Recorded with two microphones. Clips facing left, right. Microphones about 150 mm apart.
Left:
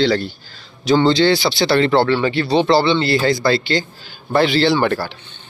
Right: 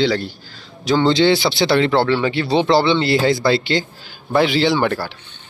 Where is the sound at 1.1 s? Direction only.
20° right (ahead or behind).